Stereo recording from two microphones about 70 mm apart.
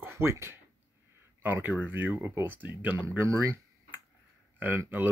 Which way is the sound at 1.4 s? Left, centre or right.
Right.